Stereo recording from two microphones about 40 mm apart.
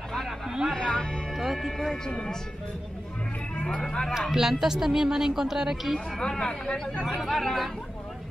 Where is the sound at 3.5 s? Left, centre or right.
Left.